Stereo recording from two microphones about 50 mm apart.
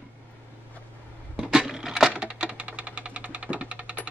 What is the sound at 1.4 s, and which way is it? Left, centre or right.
Typewriter, centre.